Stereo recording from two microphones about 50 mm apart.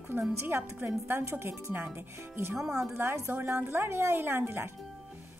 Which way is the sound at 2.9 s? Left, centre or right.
Right.